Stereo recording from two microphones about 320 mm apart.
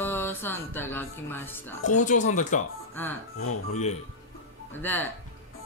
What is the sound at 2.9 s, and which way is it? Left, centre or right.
Speech, centre.